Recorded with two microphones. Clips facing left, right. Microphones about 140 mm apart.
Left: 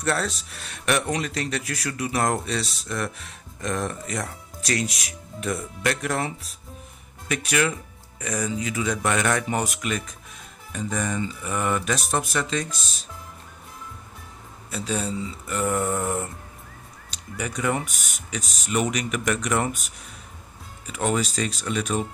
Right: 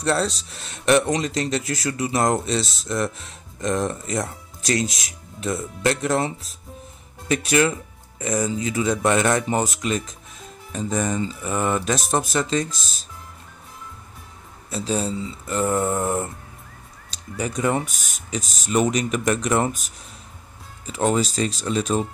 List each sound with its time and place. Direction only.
0.0 s speech: 25° right (ahead or behind)
14.7 s speech: 30° right (ahead or behind)
17.4 s speech: 30° right (ahead or behind)
20.8 s speech: 30° right (ahead or behind)